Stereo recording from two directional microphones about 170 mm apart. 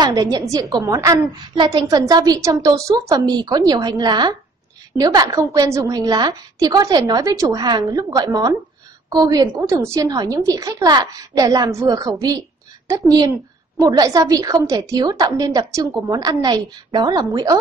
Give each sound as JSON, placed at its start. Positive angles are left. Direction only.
{"t": 0.0, "sound": "a woman's voice", "side_deg": -20}